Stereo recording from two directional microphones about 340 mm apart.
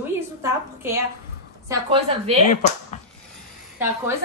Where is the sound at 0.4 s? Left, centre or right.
Centre.